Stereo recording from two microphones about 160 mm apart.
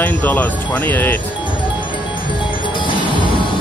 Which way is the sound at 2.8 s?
30° left (ahead or behind).